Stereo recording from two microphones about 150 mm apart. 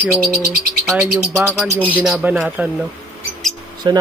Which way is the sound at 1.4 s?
10° left (ahead or behind).